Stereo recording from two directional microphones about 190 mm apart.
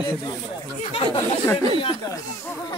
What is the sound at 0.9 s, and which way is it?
Speech, 30° left (ahead or behind).